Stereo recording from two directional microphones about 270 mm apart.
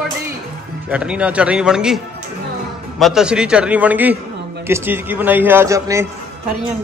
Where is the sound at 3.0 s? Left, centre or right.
Centre.